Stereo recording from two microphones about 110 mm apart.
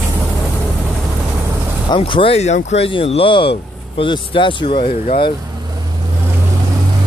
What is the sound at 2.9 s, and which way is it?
Speech, 55° left (ahead or behind).